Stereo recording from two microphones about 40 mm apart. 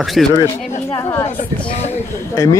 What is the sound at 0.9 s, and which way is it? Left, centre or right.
Speech, left.